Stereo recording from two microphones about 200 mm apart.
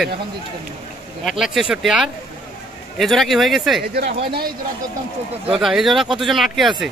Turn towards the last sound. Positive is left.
turn(degrees=0)  # may be behind; listen again after turning